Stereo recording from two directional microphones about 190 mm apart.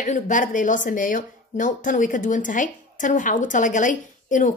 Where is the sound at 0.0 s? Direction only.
45° left (ahead or behind).